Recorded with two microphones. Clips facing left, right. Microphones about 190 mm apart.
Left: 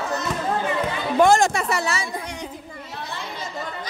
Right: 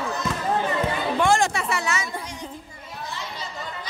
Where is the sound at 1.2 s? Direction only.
40° left (ahead or behind).